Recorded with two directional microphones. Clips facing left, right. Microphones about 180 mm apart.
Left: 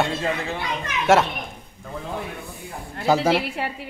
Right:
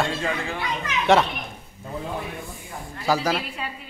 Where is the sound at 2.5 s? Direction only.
60° left (ahead or behind).